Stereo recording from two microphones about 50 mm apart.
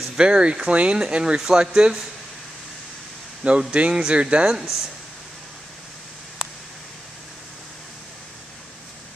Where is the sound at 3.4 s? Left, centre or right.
Centre.